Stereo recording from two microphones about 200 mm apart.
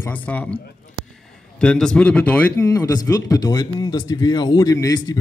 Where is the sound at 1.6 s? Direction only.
5° left (ahead or behind).